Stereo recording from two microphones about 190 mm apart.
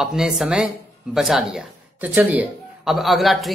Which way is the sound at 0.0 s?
Centre (ahead or behind).